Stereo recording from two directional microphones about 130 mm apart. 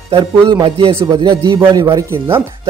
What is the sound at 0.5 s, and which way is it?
A man's voice, 40° right (ahead or behind).